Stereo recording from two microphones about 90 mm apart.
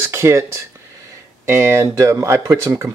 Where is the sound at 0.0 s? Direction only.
30° right (ahead or behind).